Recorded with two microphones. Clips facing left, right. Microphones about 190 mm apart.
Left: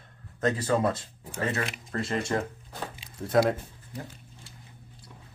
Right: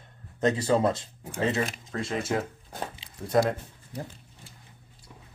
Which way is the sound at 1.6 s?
Centre (ahead or behind).